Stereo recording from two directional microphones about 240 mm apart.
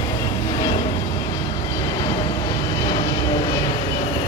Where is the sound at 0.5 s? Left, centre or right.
Centre.